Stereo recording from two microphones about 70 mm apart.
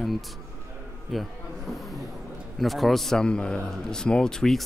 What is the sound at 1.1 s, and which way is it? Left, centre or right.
Speech, centre.